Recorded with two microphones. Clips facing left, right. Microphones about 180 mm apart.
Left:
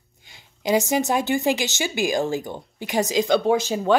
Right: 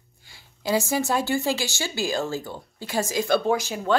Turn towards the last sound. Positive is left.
turn(degrees=20)  # may be behind; listen again after turning